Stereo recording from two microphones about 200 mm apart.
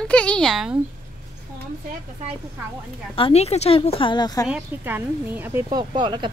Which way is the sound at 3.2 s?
30° left (ahead or behind).